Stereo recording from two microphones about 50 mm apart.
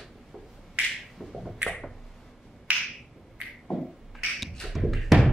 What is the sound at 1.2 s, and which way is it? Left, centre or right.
Finger snapping, centre.